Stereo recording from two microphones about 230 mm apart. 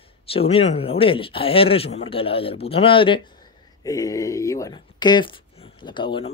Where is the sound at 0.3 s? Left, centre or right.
Left.